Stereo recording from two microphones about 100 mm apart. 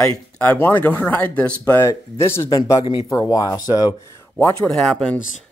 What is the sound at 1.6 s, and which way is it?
Speech, 25° left (ahead or behind).